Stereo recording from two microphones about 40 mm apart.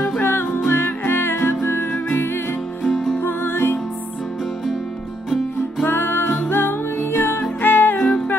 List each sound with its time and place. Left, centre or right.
0.2 s music: left
2.1 s music: left
2.9 s music: centre
3.2 s music: left
5.9 s music: left